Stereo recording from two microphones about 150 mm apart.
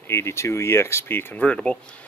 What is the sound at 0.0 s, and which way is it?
Speech, 15° left (ahead or behind).